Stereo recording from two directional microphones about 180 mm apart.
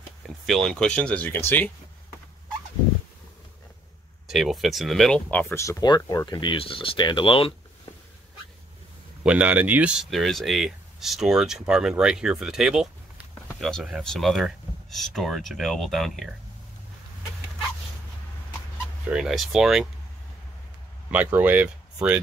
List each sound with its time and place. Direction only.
0.5 s speech: 5° left (ahead or behind)
4.3 s speech: centre (ahead or behind); by 7.9 s 30° left (ahead or behind)
9.2 s speech: 5° right (ahead or behind)
19.0 s speech: 5° right (ahead or behind)
21.1 s speech: 10° right (ahead or behind)